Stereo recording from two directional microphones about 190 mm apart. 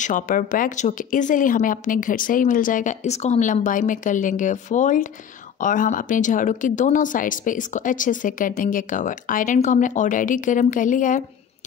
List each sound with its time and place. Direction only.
0.0 s speech: 45° left (ahead or behind)